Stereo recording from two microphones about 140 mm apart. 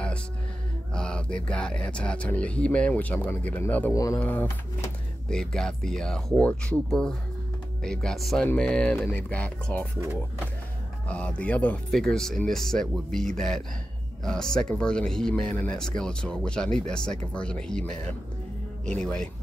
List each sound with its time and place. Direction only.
0.9 s speech: 5° left (ahead or behind)
3.9 s speech: 25° left (ahead or behind)
4.2 s speech: 15° left (ahead or behind)
11.1 s speech: 10° left (ahead or behind)